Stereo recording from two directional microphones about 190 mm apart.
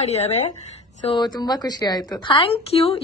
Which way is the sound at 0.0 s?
35° left (ahead or behind).